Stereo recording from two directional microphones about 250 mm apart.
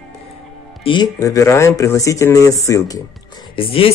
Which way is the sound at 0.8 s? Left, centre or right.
Centre.